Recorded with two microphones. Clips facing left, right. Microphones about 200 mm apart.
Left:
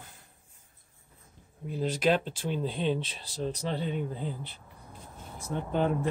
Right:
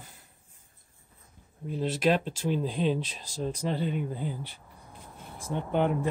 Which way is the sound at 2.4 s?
5° right (ahead or behind).